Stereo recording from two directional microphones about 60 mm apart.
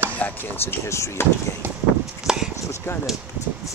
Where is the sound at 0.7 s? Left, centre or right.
Left.